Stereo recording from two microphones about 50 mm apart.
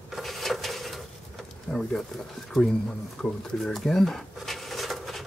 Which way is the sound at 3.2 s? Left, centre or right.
Centre.